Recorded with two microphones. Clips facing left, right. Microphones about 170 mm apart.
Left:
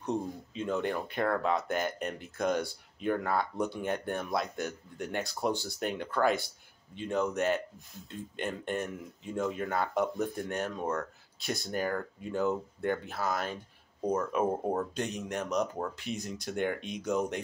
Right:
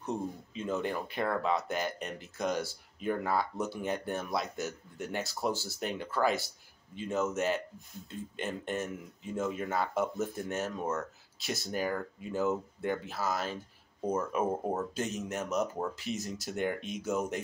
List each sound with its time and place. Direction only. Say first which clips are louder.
0.6 s speech: left 2 dB; centre (ahead or behind)